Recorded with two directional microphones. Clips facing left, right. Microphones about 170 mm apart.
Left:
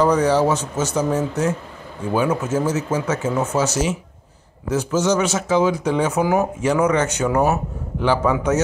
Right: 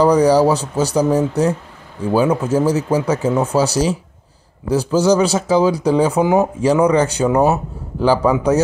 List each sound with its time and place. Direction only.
0.0 s speech: 35° right (ahead or behind)